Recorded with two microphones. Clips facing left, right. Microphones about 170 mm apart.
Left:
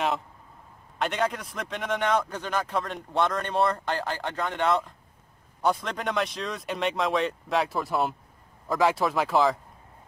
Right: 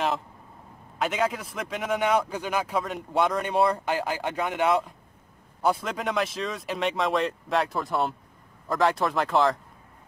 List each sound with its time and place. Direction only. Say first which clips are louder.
0.9 s a man's voice: right 1 dB; centre (ahead or behind)